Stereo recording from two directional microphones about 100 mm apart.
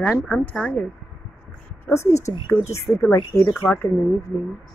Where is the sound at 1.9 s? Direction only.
30° left (ahead or behind).